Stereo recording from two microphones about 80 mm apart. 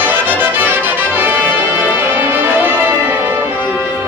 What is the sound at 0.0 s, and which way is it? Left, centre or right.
Music, right.